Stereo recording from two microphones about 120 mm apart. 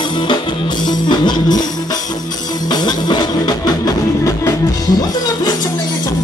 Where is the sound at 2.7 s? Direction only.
35° left (ahead or behind).